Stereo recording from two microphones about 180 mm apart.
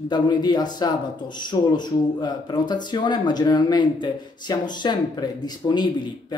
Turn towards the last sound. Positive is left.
turn(degrees=25)  # may be behind; listen again after turning